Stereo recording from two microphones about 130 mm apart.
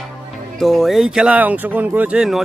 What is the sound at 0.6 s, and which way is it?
Speech, centre (ahead or behind).